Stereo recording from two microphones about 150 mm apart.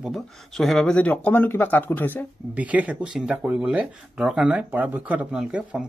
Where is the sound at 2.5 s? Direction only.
10° right (ahead or behind).